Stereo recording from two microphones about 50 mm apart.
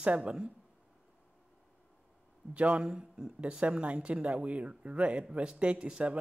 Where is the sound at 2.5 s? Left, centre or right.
Right.